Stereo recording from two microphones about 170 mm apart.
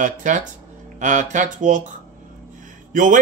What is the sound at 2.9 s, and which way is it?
Speech, 50° right (ahead or behind).